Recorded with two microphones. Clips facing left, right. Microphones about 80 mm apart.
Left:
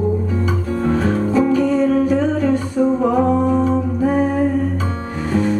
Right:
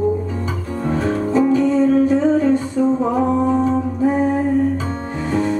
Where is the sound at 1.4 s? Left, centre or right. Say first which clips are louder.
Right 3 dB; right.